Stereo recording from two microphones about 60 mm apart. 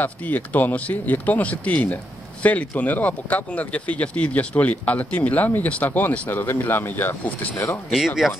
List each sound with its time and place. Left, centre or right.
0.0 s speech: left
7.5 s speech: left